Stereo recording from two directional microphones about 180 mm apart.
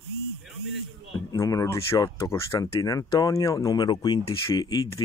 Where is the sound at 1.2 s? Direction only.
20° left (ahead or behind).